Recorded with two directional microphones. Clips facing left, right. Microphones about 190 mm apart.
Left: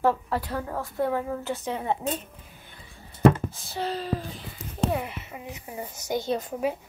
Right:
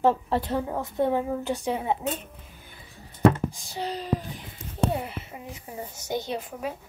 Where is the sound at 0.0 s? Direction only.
25° right (ahead or behind); by 2.0 s 10° right (ahead or behind).